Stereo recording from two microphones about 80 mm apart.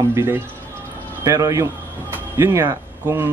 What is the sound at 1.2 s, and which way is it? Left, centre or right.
Speech, right.